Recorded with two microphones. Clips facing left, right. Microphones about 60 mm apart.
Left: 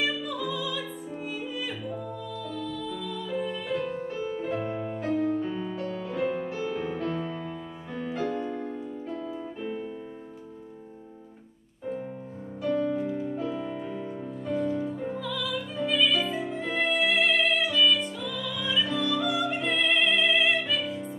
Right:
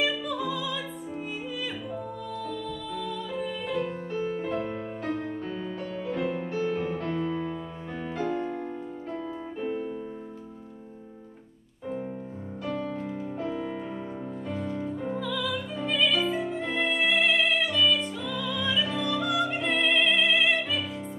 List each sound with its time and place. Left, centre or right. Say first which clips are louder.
0.0 s music: right 1 dB; centre
1.9 s music: even; centre
4.7 s music: left 2 dB; centre
5.0 s music: left 6 dB; centre
8.2 s music: right 1 dB; right
9.4 s music: right 2 dB; centre
12.6 s music: left 6 dB; centre
13.5 s music: even; right; by 20.8 s centre